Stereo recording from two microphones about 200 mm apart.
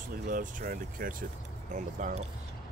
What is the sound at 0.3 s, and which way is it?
Speech, 40° right (ahead or behind).